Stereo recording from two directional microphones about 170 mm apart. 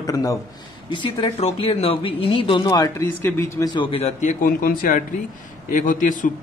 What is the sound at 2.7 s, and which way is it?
Speech, 15° left (ahead or behind).